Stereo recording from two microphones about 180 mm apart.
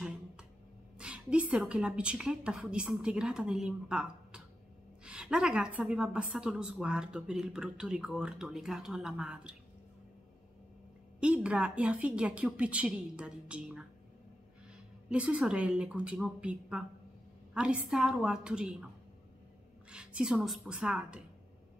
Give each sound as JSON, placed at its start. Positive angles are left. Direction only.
{"t": 0.9, "sound": "a woman's voice", "side_deg": -5}
{"t": 11.1, "sound": "a woman's voice", "side_deg": -5}
{"t": 15.0, "sound": "a woman's voice", "side_deg": -5}
{"t": 19.9, "sound": "a woman's voice", "side_deg": -5}